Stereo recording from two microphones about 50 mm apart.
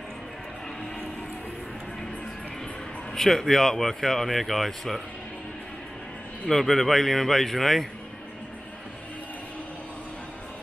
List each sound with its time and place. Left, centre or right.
3.2 s speech: centre
6.4 s speech: centre